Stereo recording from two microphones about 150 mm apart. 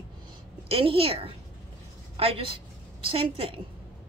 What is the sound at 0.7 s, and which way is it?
A woman's voice, 40° right (ahead or behind).